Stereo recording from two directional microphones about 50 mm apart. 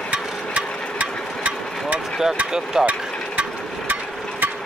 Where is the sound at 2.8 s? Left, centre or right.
Centre.